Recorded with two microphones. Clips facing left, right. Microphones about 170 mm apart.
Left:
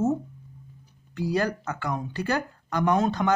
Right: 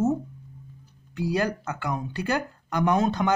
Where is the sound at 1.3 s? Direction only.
5° right (ahead or behind).